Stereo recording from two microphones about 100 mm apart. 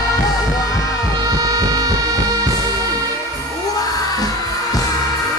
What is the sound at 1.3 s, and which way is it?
Music, 35° right (ahead or behind).